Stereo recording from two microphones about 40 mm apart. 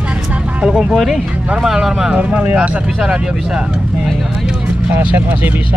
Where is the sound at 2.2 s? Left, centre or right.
Right.